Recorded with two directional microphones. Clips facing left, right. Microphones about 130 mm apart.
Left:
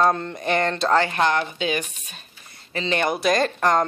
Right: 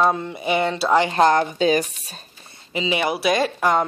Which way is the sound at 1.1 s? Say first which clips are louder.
Right 5 dB; 40° right (ahead or behind).